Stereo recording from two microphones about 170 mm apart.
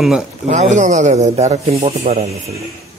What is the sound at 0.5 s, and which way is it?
Speech, 45° right (ahead or behind).